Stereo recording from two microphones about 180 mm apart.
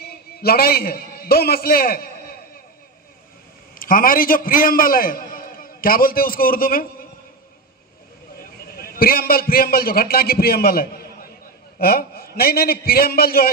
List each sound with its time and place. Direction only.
0.0 s a man's voice: 60° left (ahead or behind)
3.7 s a man's voice: 50° left (ahead or behind)
8.4 s a man's voice: 60° left (ahead or behind)